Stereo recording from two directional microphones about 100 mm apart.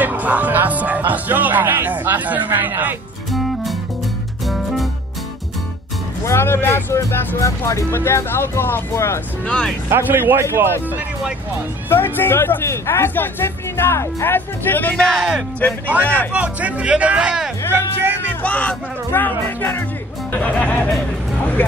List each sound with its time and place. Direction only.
0.0 s music: 15° right (ahead or behind)
1.1 s speech: 15° right (ahead or behind)
3.3 s music: centre (ahead or behind)
6.2 s speech: 25° left (ahead or behind)
9.5 s speech: 10° left (ahead or behind)
9.8 s speech: 25° right (ahead or behind)
11.9 s speech: 20° left (ahead or behind)
15.0 s speech: 5° right (ahead or behind)
16.0 s speech: 15° left (ahead or behind)
16.3 s speech: 15° right (ahead or behind)
18.4 s speech: 15° left (ahead or behind)